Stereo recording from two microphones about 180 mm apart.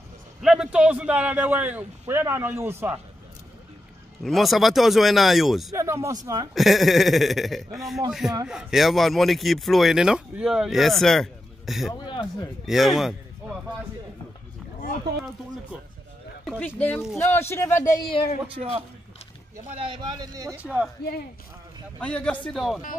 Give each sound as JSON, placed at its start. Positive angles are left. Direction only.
{"t": 0.4, "sound": "a man's voice", "side_deg": -5}
{"t": 4.2, "sound": "speech", "side_deg": 0}
{"t": 5.7, "sound": "a man's voice", "side_deg": -15}
{"t": 6.5, "sound": "speech", "side_deg": 0}
{"t": 11.9, "sound": "speech", "side_deg": 25}
{"t": 12.6, "sound": "speech", "side_deg": 0}
{"t": 16.4, "sound": "speech", "side_deg": 5}
{"t": 18.0, "sound": "speech", "side_deg": 30}
{"t": 18.5, "sound": "a man's voice", "side_deg": -35}
{"t": 19.8, "sound": "speech", "side_deg": -25}
{"t": 20.6, "sound": "speech", "side_deg": -5}
{"t": 22.0, "sound": "speech", "side_deg": 5}